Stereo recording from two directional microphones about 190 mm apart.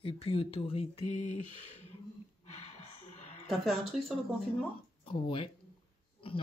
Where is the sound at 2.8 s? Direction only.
35° left (ahead or behind).